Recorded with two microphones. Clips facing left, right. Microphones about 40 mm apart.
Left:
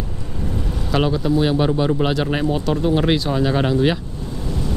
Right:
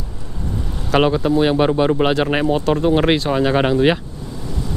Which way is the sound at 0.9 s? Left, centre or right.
Right.